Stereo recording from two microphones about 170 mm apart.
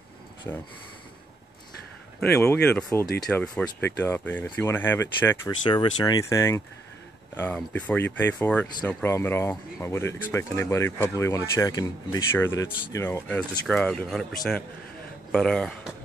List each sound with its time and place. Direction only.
2.4 s speech: 5° left (ahead or behind)
5.7 s speech: 25° left (ahead or behind); by 15.9 s 5° left (ahead or behind)